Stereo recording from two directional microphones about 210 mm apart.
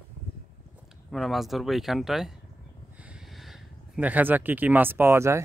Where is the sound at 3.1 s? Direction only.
Centre (ahead or behind).